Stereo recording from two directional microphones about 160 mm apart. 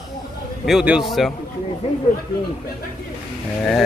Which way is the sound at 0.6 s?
5° right (ahead or behind).